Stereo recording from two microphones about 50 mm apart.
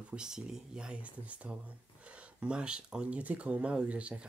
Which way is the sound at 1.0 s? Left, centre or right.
Right.